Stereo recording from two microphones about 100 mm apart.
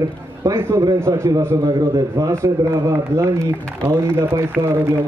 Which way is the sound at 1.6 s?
40° right (ahead or behind).